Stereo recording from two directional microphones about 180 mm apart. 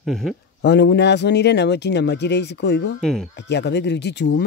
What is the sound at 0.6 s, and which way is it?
Speech, 70° left (ahead or behind).